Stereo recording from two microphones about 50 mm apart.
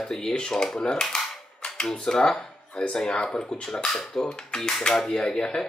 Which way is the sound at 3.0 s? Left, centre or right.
Centre.